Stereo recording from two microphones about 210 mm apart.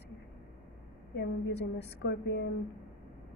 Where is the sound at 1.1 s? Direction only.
55° left (ahead or behind).